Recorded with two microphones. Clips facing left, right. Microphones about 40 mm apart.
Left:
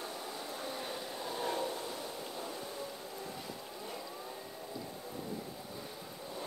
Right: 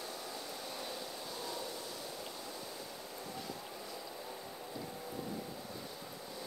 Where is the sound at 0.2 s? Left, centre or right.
Left.